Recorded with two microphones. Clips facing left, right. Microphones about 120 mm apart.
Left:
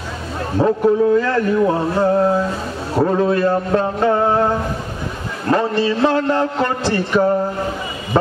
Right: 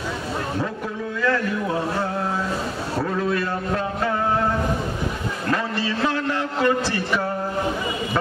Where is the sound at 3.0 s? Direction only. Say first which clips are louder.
Left 9 dB; 40° left (ahead or behind).